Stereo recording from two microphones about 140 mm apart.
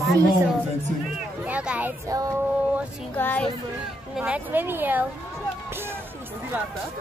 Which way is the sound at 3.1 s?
10° left (ahead or behind).